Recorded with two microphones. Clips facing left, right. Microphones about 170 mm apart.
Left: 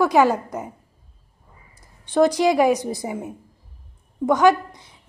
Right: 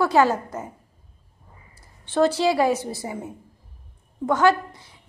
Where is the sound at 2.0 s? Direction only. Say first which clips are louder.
Left 3 dB; 15° left (ahead or behind).